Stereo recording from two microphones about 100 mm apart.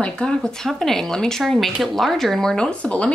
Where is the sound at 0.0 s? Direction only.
10° left (ahead or behind).